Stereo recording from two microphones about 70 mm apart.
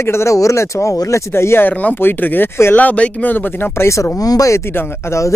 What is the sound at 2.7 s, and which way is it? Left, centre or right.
Speech, left.